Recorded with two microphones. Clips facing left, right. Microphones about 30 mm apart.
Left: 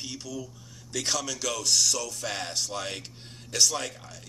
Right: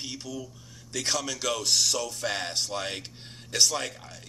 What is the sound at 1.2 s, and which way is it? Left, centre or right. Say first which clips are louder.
A man's voice: right 1 dB; right.